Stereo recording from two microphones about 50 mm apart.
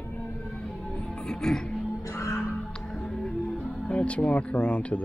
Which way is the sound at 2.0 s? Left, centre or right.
Left.